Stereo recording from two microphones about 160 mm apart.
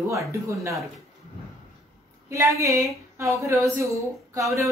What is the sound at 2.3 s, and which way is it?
Speech, 20° right (ahead or behind).